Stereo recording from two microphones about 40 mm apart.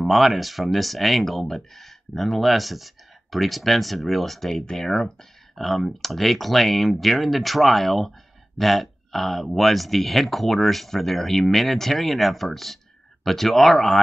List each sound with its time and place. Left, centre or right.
0.0 s speech: centre